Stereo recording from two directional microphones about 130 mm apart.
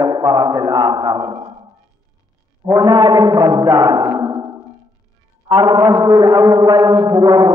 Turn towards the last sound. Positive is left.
turn(degrees=-30)  # may be behind; listen again after turning